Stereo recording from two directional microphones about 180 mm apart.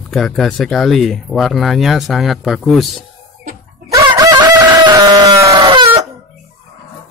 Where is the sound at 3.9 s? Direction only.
20° right (ahead or behind).